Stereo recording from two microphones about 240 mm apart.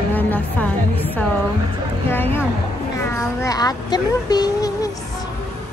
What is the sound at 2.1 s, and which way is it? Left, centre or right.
A woman's voice, centre.